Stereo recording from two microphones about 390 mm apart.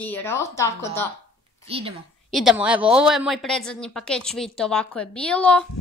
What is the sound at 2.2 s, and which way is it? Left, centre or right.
A woman's voice, centre.